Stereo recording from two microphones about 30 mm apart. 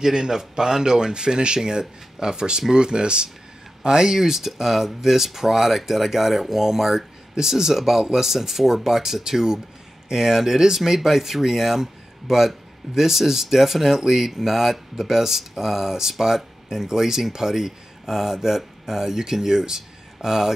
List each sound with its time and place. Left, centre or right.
0.0 s speech: centre